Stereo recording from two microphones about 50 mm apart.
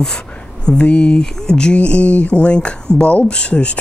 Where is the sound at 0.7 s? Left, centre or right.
Left.